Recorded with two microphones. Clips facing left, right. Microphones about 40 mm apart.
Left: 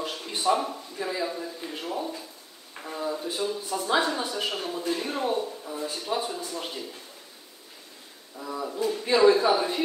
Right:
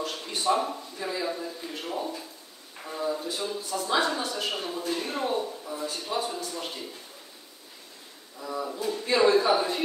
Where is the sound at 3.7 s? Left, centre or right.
Centre.